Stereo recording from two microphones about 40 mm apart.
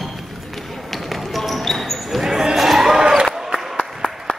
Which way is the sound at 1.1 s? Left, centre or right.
Centre.